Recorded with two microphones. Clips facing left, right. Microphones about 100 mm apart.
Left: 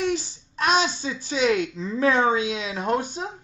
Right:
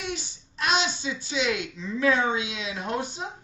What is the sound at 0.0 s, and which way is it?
A child's voice, 40° left (ahead or behind).